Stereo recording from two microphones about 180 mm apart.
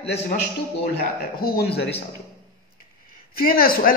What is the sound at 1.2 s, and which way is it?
Speech, 60° left (ahead or behind).